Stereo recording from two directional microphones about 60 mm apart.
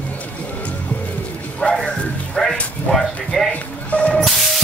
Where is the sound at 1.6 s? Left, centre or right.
Centre.